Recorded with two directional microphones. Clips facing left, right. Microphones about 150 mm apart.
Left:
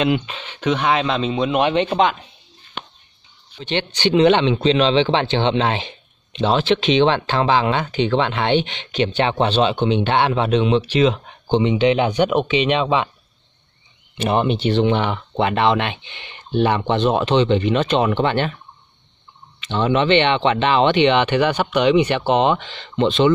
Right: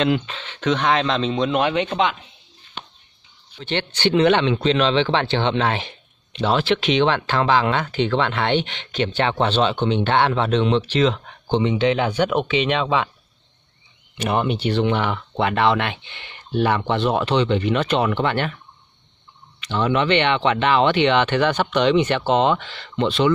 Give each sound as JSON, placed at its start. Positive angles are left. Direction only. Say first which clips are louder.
{"t": 0.0, "sound": "speech", "louder": "left 1 dB", "side_deg": 15}
{"t": 1.6, "sound": "speech", "louder": "left 6 dB", "side_deg": 25}
{"t": 2.8, "sound": "music", "louder": "left 4 dB", "side_deg": 60}
{"t": 3.5, "sound": "speech", "louder": "left 2 dB", "side_deg": 15}
{"t": 14.1, "sound": "speech", "louder": "left 3 dB", "side_deg": 25}
{"t": 19.6, "sound": "speech", "louder": "left 2 dB", "side_deg": 25}